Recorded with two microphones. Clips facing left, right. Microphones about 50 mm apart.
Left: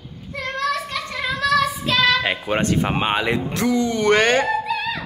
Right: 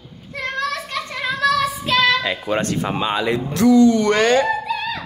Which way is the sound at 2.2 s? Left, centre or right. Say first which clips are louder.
Even; left.